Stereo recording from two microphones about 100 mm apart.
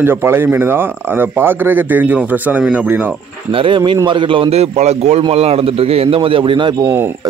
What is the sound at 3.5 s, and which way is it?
A man's voice, 60° right (ahead or behind).